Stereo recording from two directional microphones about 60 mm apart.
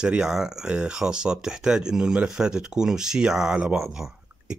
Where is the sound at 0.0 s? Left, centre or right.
Centre.